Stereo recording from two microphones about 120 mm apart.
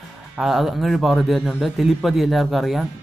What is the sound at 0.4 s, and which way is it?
Speech, centre (ahead or behind).